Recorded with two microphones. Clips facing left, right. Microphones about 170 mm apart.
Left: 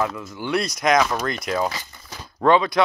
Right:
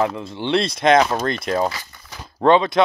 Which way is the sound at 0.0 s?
25° right (ahead or behind).